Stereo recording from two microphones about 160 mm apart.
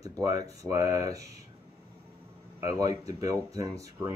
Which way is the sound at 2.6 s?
20° right (ahead or behind).